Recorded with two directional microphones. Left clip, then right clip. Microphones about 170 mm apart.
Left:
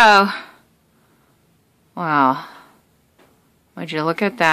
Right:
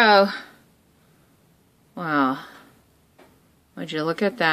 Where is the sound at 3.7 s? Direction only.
35° left (ahead or behind).